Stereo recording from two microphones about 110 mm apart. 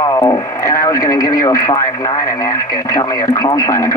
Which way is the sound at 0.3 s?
30° left (ahead or behind).